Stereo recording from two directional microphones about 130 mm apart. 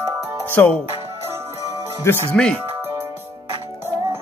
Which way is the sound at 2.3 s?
5° left (ahead or behind).